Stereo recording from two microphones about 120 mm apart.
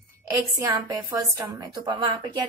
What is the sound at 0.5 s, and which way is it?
A woman's voice, 30° right (ahead or behind).